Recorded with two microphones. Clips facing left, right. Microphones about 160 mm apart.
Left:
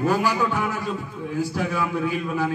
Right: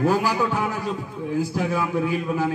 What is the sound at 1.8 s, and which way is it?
Speech, 20° right (ahead or behind).